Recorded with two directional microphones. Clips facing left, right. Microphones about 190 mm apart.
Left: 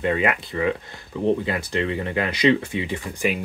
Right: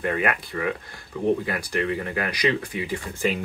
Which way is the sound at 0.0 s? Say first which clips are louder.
Left 3 dB; 20° left (ahead or behind).